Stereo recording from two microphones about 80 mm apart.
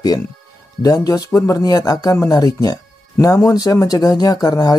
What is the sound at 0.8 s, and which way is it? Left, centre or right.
Speech, left.